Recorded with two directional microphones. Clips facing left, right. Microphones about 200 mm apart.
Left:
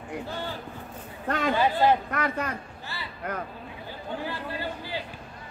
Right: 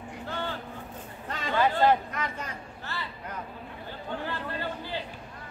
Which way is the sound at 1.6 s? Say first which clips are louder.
Right 1 dB; 10° left (ahead or behind).